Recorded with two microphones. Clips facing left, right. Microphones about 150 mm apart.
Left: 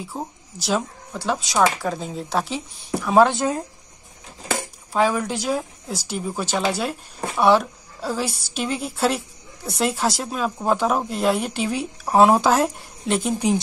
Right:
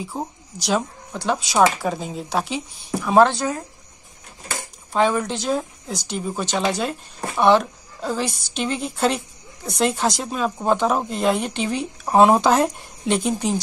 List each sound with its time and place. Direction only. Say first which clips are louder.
0.6 s speech: right 1 dB; 5° left (ahead or behind)
3.3 s speech: left 2 dB; 25° left (ahead or behind)
4.9 s speech: right 1 dB; 5° left (ahead or behind)